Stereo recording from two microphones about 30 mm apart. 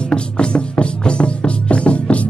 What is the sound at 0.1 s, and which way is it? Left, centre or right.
Music, left.